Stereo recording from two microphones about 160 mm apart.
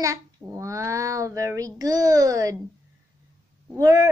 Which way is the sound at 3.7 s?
20° right (ahead or behind).